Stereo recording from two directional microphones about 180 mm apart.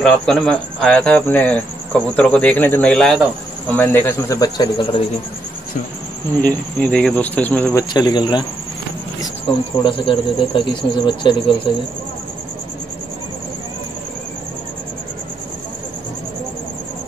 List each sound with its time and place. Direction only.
0.0 s speech: 5° left (ahead or behind); by 5.0 s 25° left (ahead or behind)
6.4 s speech: 10° left (ahead or behind)
7.9 s speech: 25° left (ahead or behind)
9.8 s speech: 30° left (ahead or behind)